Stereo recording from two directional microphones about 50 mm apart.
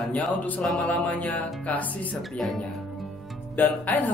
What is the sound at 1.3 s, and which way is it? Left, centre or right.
Music, left.